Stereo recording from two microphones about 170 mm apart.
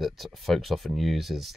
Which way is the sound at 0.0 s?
Centre (ahead or behind).